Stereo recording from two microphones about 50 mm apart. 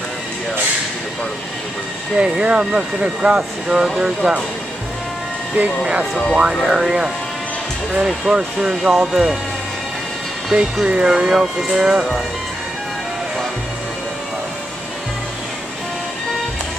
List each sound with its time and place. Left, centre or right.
2.1 s speech: right
5.6 s speech: right
6.3 s speech: centre
8.3 s speech: centre
10.5 s speech: centre
11.1 s speech: centre